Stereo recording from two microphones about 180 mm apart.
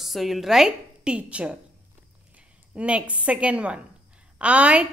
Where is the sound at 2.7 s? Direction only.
5° right (ahead or behind).